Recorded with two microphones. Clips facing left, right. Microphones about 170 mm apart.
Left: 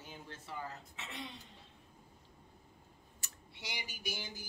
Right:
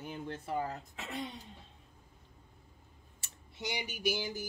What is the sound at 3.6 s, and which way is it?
Speech, 60° right (ahead or behind).